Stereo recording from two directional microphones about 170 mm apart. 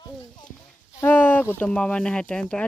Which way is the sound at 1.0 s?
10° left (ahead or behind).